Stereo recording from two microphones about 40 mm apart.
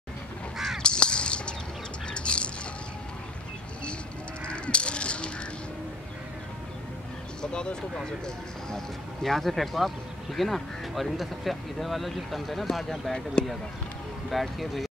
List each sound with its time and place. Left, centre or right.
0.8 s crow: left
2.0 s a sound: left
4.5 s a sound: left
8.6 s speech: centre
13.1 s speech: left
14.3 s speech: centre